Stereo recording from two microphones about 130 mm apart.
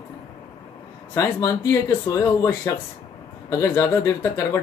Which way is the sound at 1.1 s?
25° left (ahead or behind).